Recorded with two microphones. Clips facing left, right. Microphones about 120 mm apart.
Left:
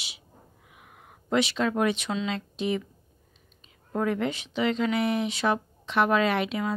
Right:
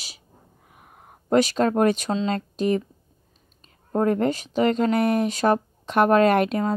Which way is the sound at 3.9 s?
45° right (ahead or behind).